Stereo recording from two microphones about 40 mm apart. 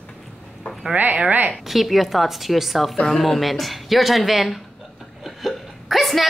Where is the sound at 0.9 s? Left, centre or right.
Right.